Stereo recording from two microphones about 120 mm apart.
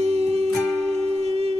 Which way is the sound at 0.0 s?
60° right (ahead or behind).